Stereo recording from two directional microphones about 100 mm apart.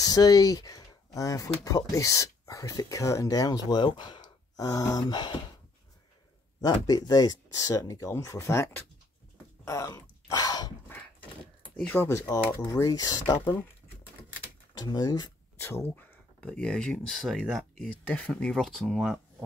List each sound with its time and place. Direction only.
0.0 s speech: 40° left (ahead or behind)
5.0 s speech: 50° left (ahead or behind)
6.6 s speech: 40° left (ahead or behind)
9.7 s speech: 40° left (ahead or behind)
11.7 s speech: 15° left (ahead or behind)
12.1 s speech: 30° left (ahead or behind)
14.7 s speech: 40° left (ahead or behind)
15.5 s speech: 25° left (ahead or behind); by 17.8 s centre (ahead or behind)
18.0 s speech: 15° left (ahead or behind)
18.3 s speech: 5° left (ahead or behind)